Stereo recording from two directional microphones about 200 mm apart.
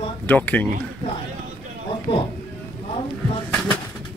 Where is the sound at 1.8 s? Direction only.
25° left (ahead or behind).